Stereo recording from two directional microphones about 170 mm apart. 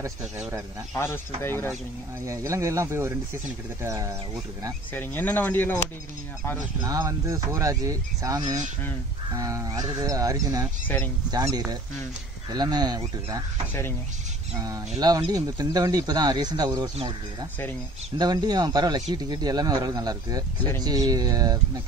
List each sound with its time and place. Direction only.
0.4 s speech: 15° right (ahead or behind)
0.9 s speech: 15° left (ahead or behind)
2.2 s speech: 20° right (ahead or behind)
4.9 s speech: 10° left (ahead or behind)
6.8 s speech: 20° right (ahead or behind)
14.6 s speech: 20° right (ahead or behind)